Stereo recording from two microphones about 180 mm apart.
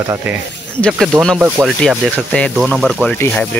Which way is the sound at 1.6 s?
15° right (ahead or behind).